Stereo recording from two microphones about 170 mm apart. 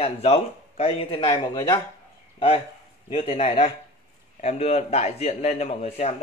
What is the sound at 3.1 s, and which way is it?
A man's voice, 35° left (ahead or behind).